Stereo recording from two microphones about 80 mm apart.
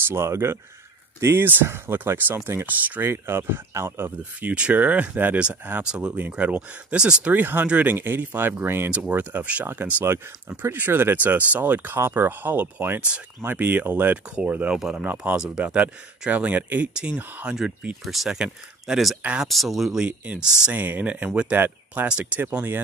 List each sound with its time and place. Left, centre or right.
0.1 s speech: right
4.2 s speech: centre
8.9 s speech: centre
18.0 s speech: centre
20.7 s speech: right
22.0 s speech: centre